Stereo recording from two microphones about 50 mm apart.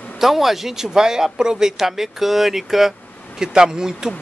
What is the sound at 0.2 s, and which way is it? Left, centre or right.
Speech, centre.